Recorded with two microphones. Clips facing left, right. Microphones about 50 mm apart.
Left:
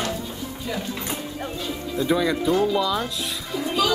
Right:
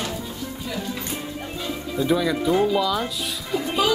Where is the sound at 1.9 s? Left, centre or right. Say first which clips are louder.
Even; centre.